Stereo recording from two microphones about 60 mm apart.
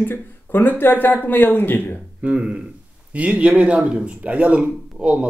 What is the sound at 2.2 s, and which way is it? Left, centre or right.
Speech, right.